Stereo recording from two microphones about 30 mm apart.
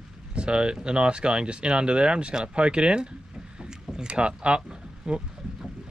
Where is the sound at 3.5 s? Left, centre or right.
Right.